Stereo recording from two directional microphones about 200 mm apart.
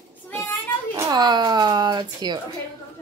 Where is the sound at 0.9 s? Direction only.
20° right (ahead or behind).